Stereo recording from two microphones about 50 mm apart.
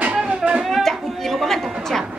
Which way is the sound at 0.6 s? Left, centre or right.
Centre.